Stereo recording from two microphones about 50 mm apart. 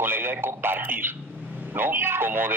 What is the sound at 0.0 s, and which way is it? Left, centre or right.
A man's voice, right.